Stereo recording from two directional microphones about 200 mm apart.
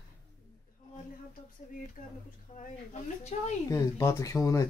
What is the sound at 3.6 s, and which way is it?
Speech, 15° left (ahead or behind).